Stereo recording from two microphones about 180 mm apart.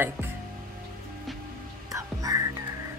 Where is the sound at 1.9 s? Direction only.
20° right (ahead or behind).